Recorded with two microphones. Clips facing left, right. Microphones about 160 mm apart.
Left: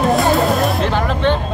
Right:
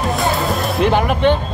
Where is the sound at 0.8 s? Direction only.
15° right (ahead or behind).